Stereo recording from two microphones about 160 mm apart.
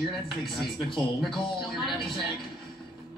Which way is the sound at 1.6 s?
Centre (ahead or behind).